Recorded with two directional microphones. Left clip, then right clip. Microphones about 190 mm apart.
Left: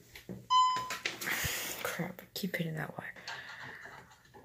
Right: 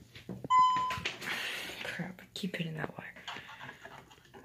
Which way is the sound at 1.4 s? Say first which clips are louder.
Left 1 dB; 10° left (ahead or behind).